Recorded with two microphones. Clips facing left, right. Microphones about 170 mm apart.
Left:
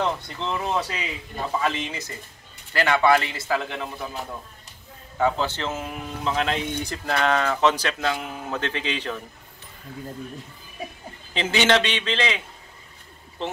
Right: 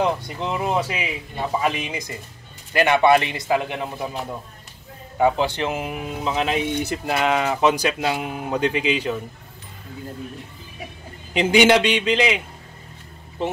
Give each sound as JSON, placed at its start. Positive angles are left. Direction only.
{"t": 0.0, "sound": "a man's voice", "side_deg": -15}
{"t": 5.1, "sound": "speech", "side_deg": -15}
{"t": 11.3, "sound": "speech", "side_deg": -15}